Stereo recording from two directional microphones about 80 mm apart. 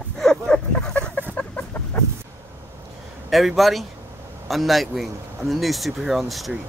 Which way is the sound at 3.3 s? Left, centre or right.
Centre.